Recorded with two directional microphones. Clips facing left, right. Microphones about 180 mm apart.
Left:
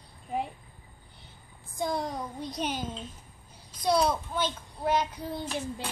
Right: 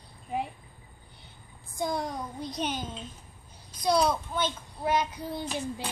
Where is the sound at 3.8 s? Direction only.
5° left (ahead or behind).